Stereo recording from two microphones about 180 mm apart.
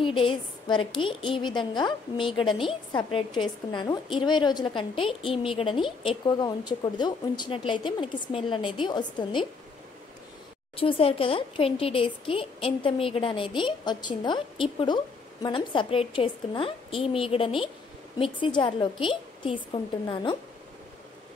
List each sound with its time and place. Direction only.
0.0 s speech: 30° left (ahead or behind)
10.8 s a woman's voice: 30° left (ahead or behind)